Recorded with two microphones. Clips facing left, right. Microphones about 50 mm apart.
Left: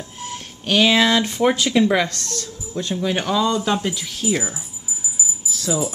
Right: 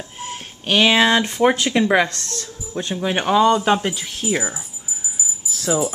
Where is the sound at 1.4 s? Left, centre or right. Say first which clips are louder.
Left 1 dB; right.